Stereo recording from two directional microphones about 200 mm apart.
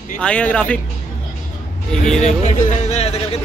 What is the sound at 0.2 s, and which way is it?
Speech, 5° left (ahead or behind).